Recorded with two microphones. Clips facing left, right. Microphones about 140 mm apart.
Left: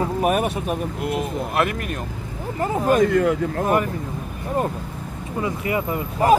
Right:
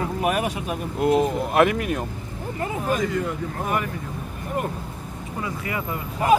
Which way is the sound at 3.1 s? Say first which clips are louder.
Left 7 dB; 85° left.